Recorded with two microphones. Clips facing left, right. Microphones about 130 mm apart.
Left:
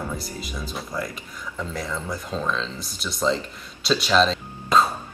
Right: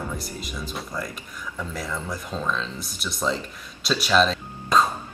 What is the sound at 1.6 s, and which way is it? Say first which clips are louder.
Speech: left 1 dB; centre (ahead or behind).